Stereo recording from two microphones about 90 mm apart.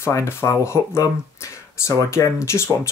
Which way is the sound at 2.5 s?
30° left (ahead or behind).